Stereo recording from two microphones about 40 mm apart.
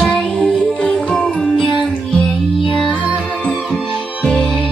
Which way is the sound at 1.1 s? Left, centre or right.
Centre.